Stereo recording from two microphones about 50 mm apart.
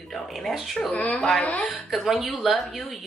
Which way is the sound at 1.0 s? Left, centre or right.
Left.